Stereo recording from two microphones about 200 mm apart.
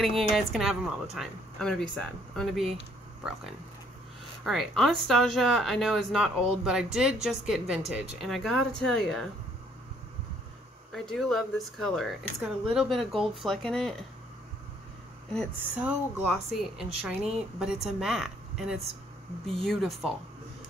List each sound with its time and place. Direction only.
0.0 s speech: centre (ahead or behind)
4.5 s speech: centre (ahead or behind)
10.9 s speech: centre (ahead or behind)
15.8 s speech: 5° right (ahead or behind)